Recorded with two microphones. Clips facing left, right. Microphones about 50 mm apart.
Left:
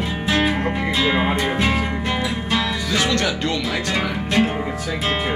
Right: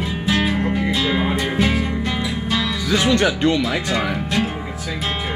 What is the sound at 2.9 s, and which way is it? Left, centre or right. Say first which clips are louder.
Music: right 5 dB; centre.